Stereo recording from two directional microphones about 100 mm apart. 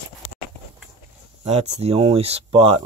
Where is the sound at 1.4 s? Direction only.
90° right; by 2.8 s 70° right (ahead or behind).